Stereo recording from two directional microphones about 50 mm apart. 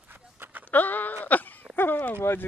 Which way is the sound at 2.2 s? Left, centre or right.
Left.